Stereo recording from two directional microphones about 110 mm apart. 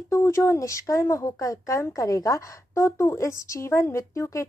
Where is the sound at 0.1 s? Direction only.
25° left (ahead or behind).